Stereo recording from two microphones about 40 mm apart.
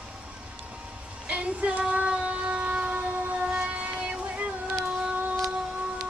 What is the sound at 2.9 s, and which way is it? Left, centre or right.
Train, right.